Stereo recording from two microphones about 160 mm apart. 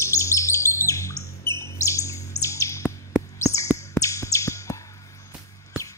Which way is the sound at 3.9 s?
20° left (ahead or behind).